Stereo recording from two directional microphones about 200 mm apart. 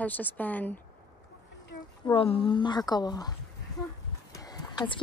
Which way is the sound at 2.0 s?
25° left (ahead or behind).